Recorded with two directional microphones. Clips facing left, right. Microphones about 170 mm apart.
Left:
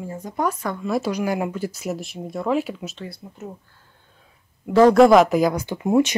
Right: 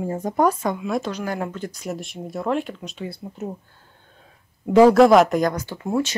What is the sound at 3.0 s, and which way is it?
Speech, 25° right (ahead or behind).